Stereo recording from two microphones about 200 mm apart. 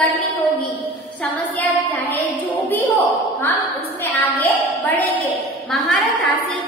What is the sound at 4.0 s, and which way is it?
A woman's voice, 10° left (ahead or behind).